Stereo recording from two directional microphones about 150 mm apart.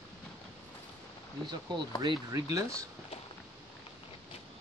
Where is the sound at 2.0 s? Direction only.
25° right (ahead or behind).